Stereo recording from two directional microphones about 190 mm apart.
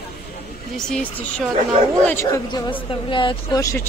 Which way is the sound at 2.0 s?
15° left (ahead or behind).